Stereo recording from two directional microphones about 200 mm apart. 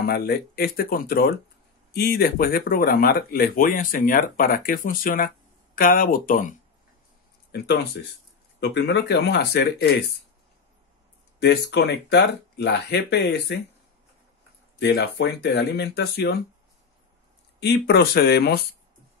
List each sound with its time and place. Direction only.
0.0 s speech: 50° left (ahead or behind)
7.5 s speech: 55° left (ahead or behind)
11.7 s speech: 60° left (ahead or behind)
14.8 s speech: 55° left (ahead or behind)
17.6 s speech: 55° left (ahead or behind)